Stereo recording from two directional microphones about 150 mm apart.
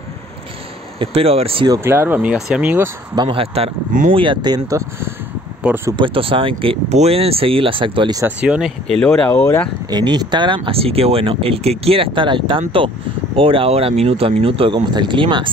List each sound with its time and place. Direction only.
0.9 s speech: 40° right (ahead or behind)
1.7 s speech: 15° right (ahead or behind)
3.2 s speech: 35° right (ahead or behind); by 5.1 s 20° right (ahead or behind)
5.9 s speech: 35° right (ahead or behind)
8.4 s speech: 5° right (ahead or behind)
9.0 s speech: 10° left (ahead or behind)
9.8 s speech: 30° right (ahead or behind)